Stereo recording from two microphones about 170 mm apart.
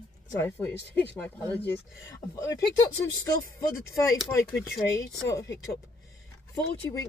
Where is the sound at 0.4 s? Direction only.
10° left (ahead or behind).